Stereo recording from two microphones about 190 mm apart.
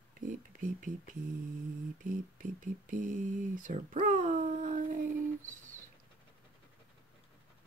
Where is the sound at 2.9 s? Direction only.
45° right (ahead or behind).